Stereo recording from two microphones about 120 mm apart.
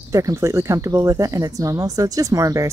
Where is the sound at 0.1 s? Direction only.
25° right (ahead or behind).